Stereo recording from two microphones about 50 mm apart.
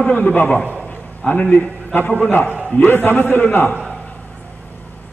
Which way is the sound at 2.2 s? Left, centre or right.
Left.